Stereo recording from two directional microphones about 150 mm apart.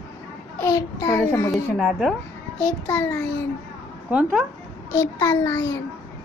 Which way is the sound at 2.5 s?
20° left (ahead or behind).